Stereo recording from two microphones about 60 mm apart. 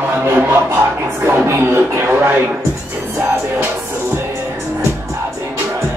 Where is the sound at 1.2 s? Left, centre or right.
Right.